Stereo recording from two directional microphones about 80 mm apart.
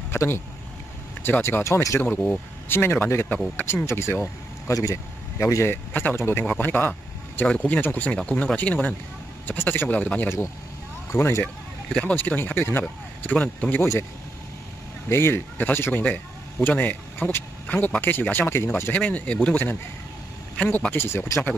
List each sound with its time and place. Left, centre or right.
0.1 s speech: left
2.1 s speech: centre
2.7 s speech: left
6.6 s a sound: left
7.4 s speech: centre
8.2 s speech: centre
11.1 s speech: left
11.4 s speech: centre
12.2 s speech: left
15.0 s speech: left